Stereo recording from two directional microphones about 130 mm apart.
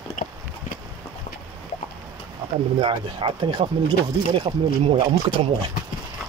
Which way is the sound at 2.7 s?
40° right (ahead or behind).